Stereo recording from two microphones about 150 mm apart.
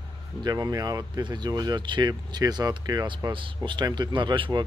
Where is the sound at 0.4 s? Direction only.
25° right (ahead or behind).